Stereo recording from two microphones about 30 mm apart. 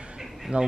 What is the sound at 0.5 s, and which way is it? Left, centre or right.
Speech, right.